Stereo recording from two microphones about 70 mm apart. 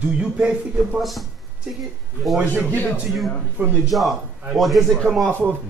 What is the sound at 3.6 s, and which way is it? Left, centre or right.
Speech, right.